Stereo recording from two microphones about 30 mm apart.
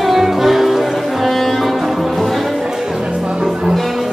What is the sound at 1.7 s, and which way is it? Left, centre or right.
Music, centre.